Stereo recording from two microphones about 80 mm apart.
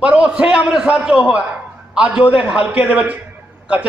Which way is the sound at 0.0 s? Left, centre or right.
Centre.